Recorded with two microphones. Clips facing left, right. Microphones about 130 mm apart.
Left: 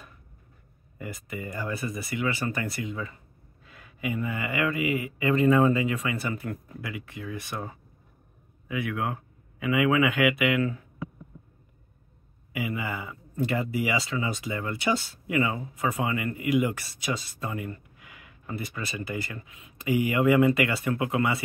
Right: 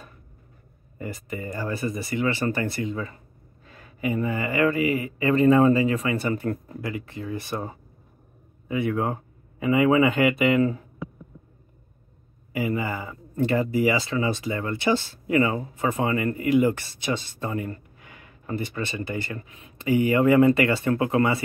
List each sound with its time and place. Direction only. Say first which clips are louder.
0.9 s speech: right 3 dB; 35° right (ahead or behind)
12.5 s speech: right 5 dB; 35° right (ahead or behind)